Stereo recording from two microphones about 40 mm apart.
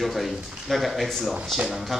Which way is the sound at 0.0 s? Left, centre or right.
Centre.